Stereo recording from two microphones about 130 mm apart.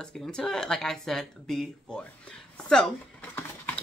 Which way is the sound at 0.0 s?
5° left (ahead or behind).